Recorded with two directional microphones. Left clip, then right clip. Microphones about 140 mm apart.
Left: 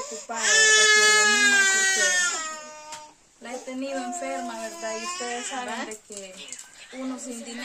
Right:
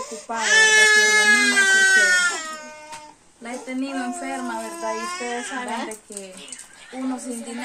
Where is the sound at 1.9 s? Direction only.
15° left (ahead or behind).